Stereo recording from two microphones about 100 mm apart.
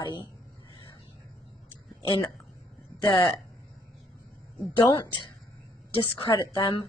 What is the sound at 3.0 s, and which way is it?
Speech, 45° left (ahead or behind).